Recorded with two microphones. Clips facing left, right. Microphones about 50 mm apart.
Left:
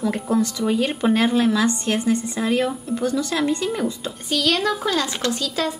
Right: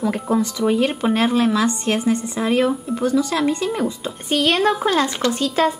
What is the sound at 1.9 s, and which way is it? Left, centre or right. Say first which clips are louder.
Speech: right 1 dB; right.